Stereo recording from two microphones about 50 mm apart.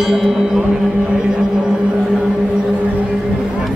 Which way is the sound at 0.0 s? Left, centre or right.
Centre.